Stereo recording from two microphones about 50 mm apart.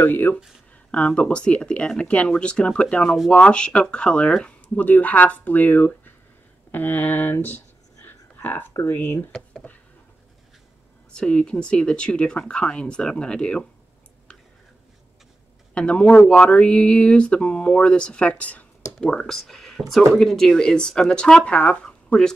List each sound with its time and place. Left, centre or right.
0.0 s speech: left
0.9 s speech: left
4.7 s speech: left
8.4 s speech: left
9.6 s a sound: left
11.1 s speech: left
15.7 s speech: left
18.9 s speech: centre
21.8 s a sound: centre